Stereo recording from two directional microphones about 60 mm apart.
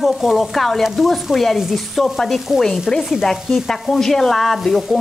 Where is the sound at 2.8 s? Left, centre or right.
Centre.